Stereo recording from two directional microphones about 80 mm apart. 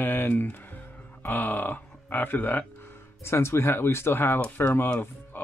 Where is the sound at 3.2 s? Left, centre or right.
Left.